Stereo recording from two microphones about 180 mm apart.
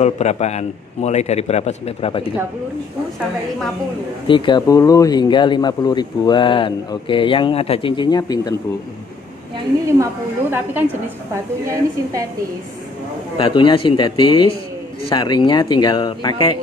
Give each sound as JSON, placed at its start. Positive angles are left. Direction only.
{"t": 0.0, "sound": "a man's voice", "side_deg": 40}
{"t": 4.3, "sound": "speech", "side_deg": 25}
{"t": 10.5, "sound": "a woman's voice", "side_deg": -10}
{"t": 13.4, "sound": "speech", "side_deg": 30}